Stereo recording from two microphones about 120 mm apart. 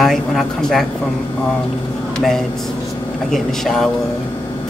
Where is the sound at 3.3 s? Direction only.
5° left (ahead or behind).